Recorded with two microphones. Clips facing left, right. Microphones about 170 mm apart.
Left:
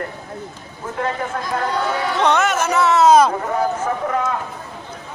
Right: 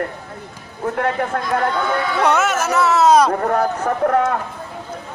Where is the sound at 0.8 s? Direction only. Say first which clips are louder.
Right 4 dB; 60° right (ahead or behind).